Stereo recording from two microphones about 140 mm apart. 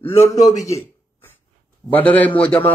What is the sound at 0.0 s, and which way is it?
Speech, 20° left (ahead or behind).